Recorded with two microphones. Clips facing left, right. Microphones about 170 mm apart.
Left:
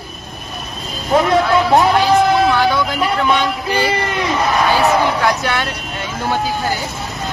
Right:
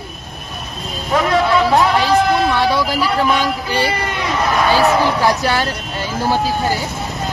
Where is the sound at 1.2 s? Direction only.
Centre (ahead or behind).